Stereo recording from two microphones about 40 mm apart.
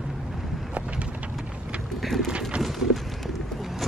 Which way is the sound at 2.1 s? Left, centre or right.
Centre.